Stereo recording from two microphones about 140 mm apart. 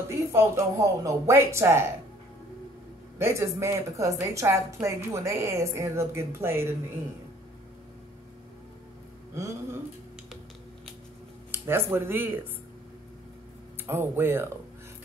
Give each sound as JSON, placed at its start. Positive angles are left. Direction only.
{"t": 0.1, "sound": "a woman's voice", "side_deg": -20}
{"t": 3.2, "sound": "a woman's voice", "side_deg": -20}
{"t": 9.3, "sound": "a woman's voice", "side_deg": -20}
{"t": 11.5, "sound": "speech", "side_deg": -15}
{"t": 13.8, "sound": "speech", "side_deg": -15}